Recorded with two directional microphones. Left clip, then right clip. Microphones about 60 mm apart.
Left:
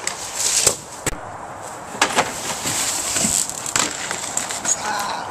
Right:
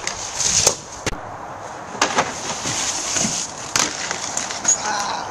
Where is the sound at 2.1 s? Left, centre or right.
Left.